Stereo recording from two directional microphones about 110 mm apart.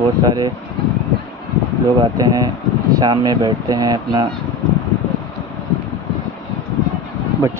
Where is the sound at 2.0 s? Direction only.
35° right (ahead or behind).